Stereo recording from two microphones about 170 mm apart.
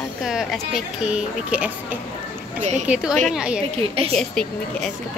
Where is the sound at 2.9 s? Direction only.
5° right (ahead or behind).